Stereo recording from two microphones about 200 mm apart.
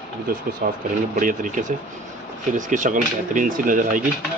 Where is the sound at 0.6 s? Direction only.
45° right (ahead or behind).